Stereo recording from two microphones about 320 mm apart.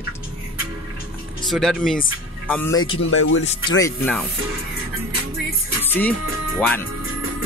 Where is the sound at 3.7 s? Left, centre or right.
Centre.